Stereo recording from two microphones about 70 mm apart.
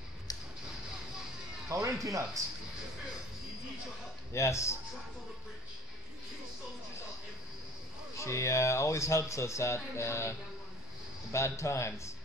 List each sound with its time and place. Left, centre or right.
0.3 s a sound: left
1.7 s speech: right
4.3 s speech: left
8.2 s speech: left
11.3 s speech: left